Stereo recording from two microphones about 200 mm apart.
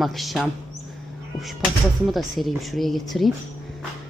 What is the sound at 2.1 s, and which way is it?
Speech, centre (ahead or behind).